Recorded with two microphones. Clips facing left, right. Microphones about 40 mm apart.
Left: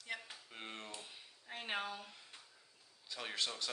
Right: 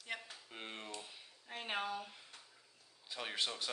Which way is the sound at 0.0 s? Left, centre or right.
Centre.